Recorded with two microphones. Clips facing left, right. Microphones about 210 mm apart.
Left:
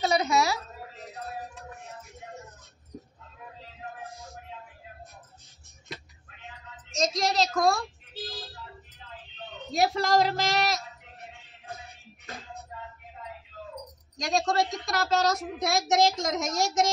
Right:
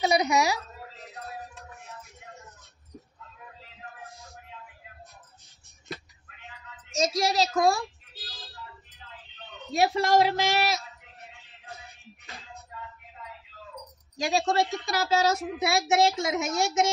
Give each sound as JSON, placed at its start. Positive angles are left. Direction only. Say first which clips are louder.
{"t": 0.0, "sound": "a child's voice", "louder": "right 1 dB", "side_deg": -15}
{"t": 6.9, "sound": "a child's voice", "louder": "right 1 dB", "side_deg": 0}
{"t": 9.7, "sound": "a child's voice", "louder": "right 1 dB", "side_deg": 0}
{"t": 14.1, "sound": "a child's voice", "louder": "right 1 dB", "side_deg": 0}